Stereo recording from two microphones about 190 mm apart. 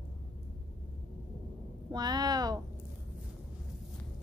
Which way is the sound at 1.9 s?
20° right (ahead or behind).